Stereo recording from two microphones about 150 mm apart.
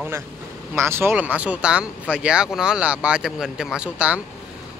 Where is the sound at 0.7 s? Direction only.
15° right (ahead or behind).